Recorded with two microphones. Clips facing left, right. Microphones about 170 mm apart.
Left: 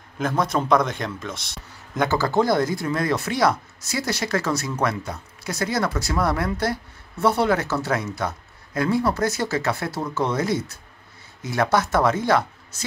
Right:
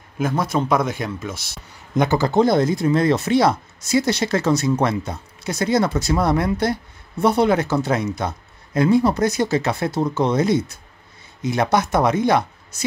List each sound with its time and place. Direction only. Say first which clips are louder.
0.2 s a man's voice: right 2 dB; 5° right (ahead or behind)
2.0 s speech: right 4 dB; 20° right (ahead or behind)